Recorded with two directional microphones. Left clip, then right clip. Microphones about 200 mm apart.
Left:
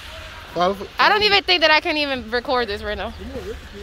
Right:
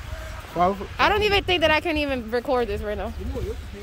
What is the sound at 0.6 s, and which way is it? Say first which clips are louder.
Speech: left 1 dB; 40° right (ahead or behind).